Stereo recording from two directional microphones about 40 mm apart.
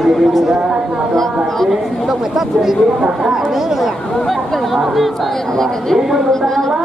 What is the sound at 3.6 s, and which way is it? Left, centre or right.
Speech, centre.